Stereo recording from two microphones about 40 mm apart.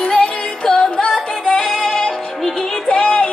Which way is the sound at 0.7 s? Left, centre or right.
Centre.